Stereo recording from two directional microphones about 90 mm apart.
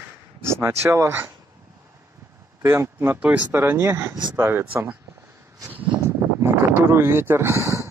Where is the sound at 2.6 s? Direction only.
30° right (ahead or behind).